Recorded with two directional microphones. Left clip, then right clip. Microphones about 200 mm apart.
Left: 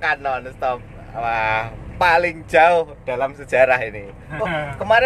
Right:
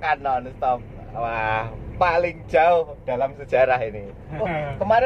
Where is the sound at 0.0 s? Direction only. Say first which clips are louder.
Left 1 dB; 30° left (ahead or behind).